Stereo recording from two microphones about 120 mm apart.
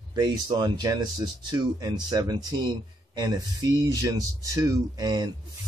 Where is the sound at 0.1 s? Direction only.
35° right (ahead or behind).